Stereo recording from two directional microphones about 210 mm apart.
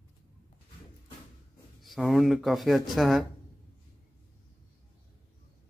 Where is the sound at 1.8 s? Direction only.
Centre (ahead or behind).